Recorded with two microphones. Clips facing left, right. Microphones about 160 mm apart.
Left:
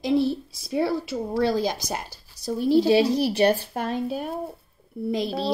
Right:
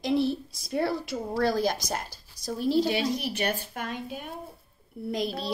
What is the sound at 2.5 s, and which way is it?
Speech, 50° left (ahead or behind).